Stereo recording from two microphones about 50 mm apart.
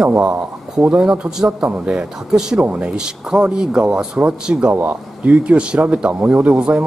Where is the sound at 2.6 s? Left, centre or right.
Right.